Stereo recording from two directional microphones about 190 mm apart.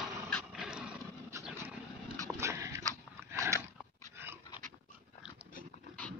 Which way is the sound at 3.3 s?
15° right (ahead or behind).